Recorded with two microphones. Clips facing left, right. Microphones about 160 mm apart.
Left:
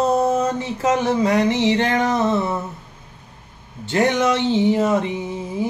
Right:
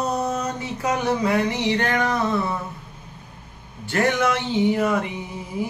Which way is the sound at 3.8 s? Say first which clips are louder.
Left 3 dB; 20° left (ahead or behind).